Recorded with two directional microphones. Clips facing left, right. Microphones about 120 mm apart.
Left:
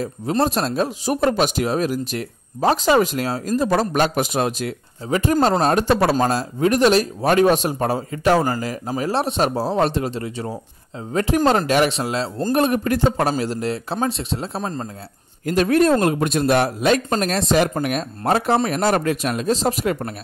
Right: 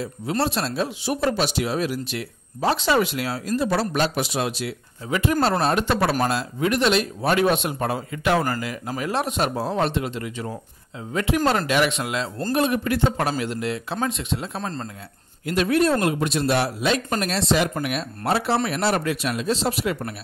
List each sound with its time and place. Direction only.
0.4 s speech: 45° left (ahead or behind)
12.5 s speech: 45° left (ahead or behind)
14.6 s speech: 15° left (ahead or behind)
15.4 s speech: 45° left (ahead or behind)